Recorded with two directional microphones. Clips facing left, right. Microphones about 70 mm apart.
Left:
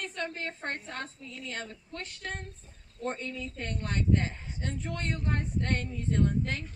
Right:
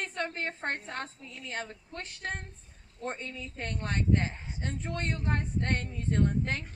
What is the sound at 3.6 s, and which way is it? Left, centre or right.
Speech, right.